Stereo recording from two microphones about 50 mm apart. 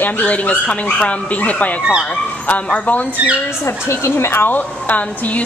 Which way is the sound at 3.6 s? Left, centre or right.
Left.